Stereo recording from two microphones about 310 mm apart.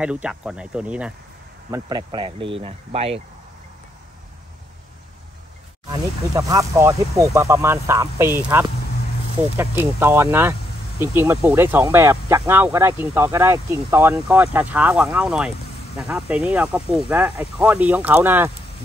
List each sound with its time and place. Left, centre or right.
0.0 s speech: centre
5.9 s speech: centre